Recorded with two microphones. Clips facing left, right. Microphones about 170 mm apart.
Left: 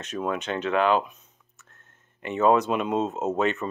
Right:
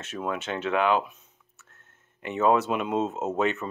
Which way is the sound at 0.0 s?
5° right (ahead or behind).